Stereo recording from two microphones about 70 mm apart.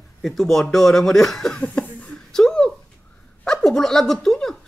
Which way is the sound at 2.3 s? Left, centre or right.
Centre.